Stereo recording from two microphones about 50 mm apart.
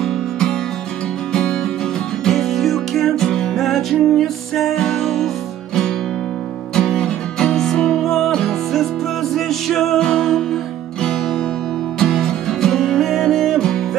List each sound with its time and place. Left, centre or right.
0.0 s music: centre
6.7 s music: centre